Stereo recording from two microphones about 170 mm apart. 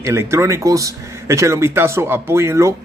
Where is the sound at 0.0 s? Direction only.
15° right (ahead or behind).